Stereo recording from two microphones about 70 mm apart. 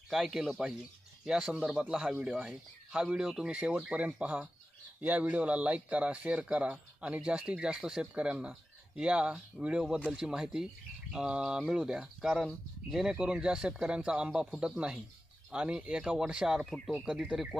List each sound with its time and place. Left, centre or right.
0.1 s speech: centre
16.6 s speech: centre
17.0 s speech: centre